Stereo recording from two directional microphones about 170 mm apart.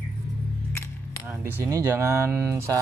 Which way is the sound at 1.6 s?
15° right (ahead or behind).